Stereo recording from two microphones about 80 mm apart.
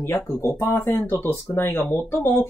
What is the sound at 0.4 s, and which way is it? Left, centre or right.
Speech, left.